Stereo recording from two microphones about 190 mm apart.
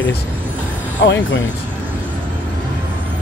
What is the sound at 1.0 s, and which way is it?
Speech, 70° left (ahead or behind).